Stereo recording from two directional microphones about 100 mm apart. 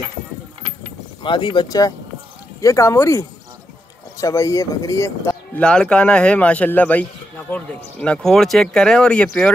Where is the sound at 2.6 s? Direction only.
30° left (ahead or behind).